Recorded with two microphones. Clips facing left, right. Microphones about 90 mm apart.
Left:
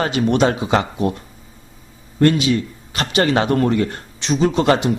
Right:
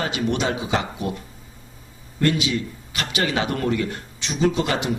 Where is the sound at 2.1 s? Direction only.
45° left (ahead or behind).